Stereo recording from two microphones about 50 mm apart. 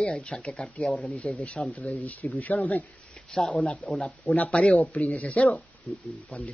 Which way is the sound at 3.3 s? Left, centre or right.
Centre.